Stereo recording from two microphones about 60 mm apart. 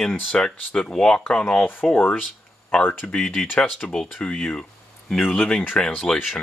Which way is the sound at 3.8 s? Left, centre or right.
Left.